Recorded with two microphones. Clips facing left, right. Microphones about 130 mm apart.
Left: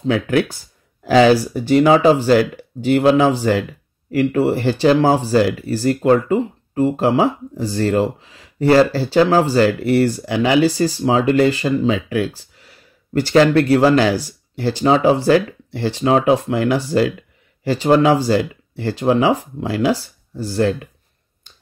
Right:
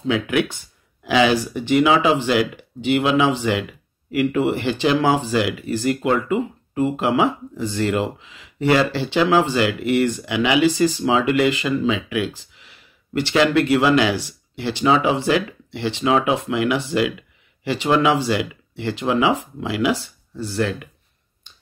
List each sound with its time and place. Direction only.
0.0 s speech: 40° left (ahead or behind)